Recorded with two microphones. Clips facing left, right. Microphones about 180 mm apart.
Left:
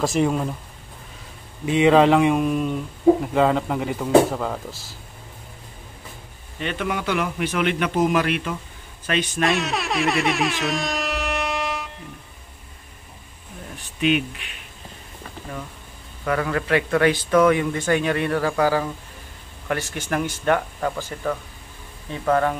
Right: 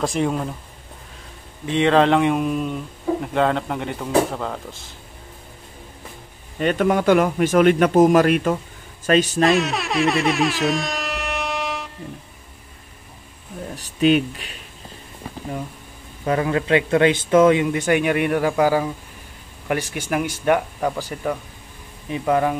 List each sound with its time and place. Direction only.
0.0 s speech: centre (ahead or behind)
1.7 s speech: 5° left (ahead or behind)
6.6 s a man's voice: 45° right (ahead or behind)
9.4 s air horn: centre (ahead or behind)
13.7 s speech: 40° right (ahead or behind)
16.3 s a man's voice: 20° right (ahead or behind)